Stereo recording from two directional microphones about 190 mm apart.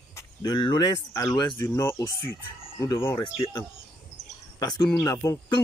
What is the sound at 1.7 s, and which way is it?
Speech, 15° left (ahead or behind).